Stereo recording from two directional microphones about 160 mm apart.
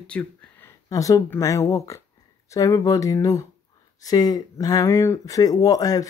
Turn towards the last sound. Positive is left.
turn(degrees=25)  # may be behind; listen again after turning